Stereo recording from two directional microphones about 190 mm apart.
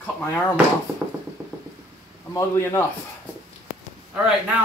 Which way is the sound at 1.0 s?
10° right (ahead or behind).